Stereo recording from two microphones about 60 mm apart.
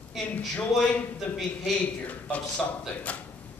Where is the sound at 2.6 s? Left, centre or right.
Left.